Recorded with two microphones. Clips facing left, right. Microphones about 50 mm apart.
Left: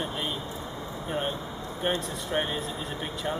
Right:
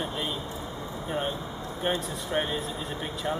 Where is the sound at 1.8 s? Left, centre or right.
Centre.